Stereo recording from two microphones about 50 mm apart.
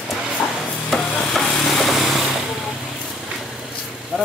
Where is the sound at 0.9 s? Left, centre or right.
Centre.